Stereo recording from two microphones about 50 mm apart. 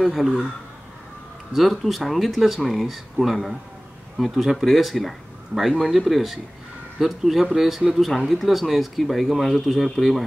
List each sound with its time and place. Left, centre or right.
0.0 s speech: centre
1.5 s speech: centre